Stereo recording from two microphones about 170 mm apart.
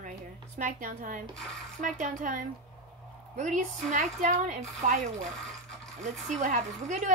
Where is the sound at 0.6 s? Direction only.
50° right (ahead or behind).